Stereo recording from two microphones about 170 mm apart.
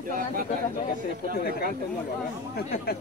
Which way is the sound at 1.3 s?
60° left (ahead or behind).